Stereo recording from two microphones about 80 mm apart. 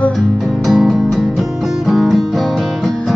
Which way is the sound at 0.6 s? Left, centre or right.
Centre.